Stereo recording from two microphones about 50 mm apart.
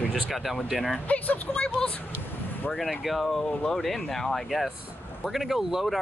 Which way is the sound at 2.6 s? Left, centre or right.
Left.